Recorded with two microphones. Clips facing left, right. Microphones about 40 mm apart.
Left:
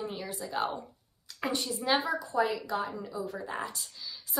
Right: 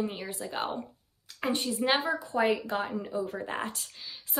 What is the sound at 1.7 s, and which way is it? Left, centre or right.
Speech, right.